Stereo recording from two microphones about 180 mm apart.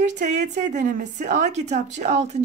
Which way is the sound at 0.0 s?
40° right (ahead or behind).